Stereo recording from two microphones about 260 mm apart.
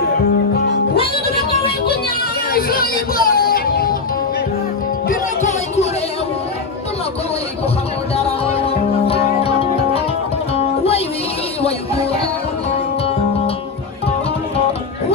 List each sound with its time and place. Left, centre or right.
2.5 s music: left
5.0 s music: left
8.2 s music: left